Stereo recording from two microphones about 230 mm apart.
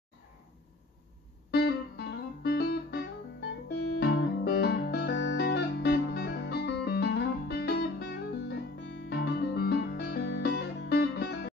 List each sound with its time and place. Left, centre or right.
1.5 s guitar: left
3.6 s music: left